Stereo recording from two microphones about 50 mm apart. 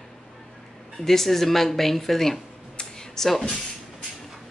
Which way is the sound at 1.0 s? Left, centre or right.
Centre.